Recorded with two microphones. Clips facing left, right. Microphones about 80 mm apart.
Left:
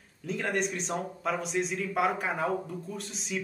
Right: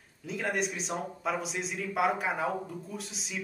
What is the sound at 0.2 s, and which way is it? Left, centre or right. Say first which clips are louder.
A man's voice: left 1 dB; centre.